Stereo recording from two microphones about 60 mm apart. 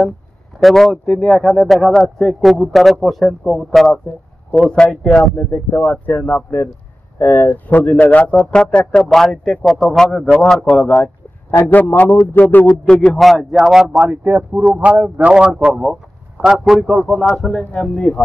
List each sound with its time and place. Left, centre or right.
0.6 s speech: centre
4.5 s a man's voice: centre
5.3 s a man's voice: left
11.7 s speech: left
12.8 s a man's voice: centre
13.2 s speech: centre
14.1 s speech: right; by 18.2 s centre